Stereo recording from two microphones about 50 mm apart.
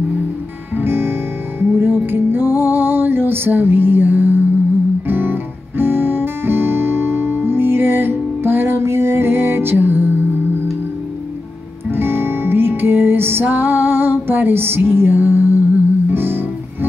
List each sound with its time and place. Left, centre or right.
0.7 s music: right
5.0 s guitar: right
11.9 s music: right